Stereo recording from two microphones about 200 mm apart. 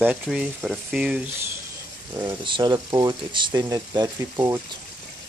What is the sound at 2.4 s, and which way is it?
Speech, 25° right (ahead or behind).